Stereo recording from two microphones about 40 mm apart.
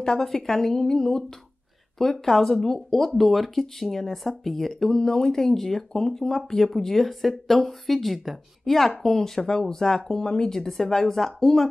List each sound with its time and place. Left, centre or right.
0.0 s speech: centre